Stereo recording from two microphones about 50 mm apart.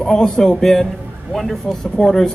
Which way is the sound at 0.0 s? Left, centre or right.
Centre.